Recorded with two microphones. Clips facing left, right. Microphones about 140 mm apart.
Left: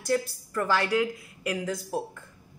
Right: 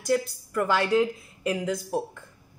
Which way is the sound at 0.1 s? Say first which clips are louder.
Right 2 dB; 15° right (ahead or behind).